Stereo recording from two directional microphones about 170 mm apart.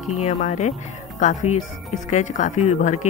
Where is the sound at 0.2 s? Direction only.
45° left (ahead or behind).